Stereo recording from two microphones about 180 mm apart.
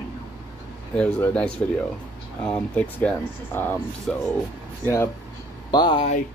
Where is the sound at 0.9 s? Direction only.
10° left (ahead or behind).